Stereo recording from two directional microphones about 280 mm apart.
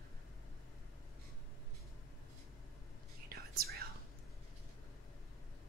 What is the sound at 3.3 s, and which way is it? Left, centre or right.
Whispering, right.